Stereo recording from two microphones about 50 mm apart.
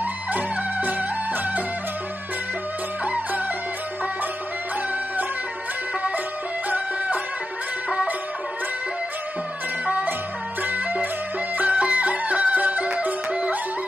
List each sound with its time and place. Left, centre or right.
0.0 s music: right
10.6 s music: right